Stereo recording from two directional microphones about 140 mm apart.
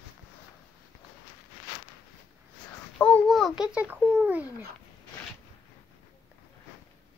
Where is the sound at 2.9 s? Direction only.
10° left (ahead or behind); by 4.7 s 10° right (ahead or behind).